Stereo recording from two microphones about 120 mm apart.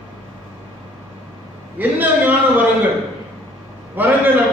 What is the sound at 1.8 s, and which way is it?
Speech, 15° right (ahead or behind).